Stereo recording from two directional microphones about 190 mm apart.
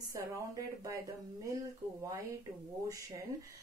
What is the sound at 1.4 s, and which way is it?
Speech, 15° right (ahead or behind).